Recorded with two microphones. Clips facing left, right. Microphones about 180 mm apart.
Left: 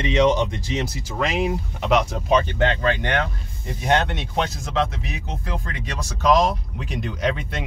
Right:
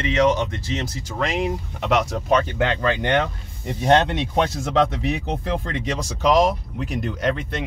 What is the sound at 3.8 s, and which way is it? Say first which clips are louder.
Speech: right 4 dB; 30° right (ahead or behind).